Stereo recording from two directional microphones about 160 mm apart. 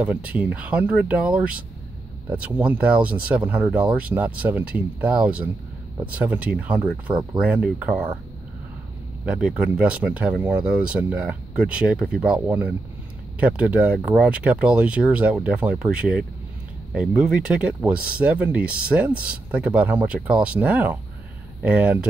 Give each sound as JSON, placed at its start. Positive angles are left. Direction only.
{"t": 0.0, "sound": "speech", "side_deg": -10}
{"t": 9.2, "sound": "speech", "side_deg": -5}